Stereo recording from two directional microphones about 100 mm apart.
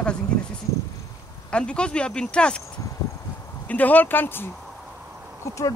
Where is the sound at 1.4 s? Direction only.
10° left (ahead or behind).